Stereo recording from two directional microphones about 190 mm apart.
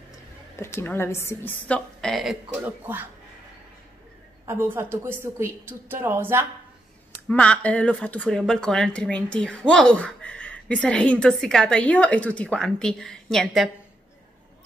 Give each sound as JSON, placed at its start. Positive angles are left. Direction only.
{"t": 0.6, "sound": "a woman's voice", "side_deg": 15}
{"t": 4.5, "sound": "a woman's voice", "side_deg": -10}
{"t": 7.2, "sound": "speech", "side_deg": 5}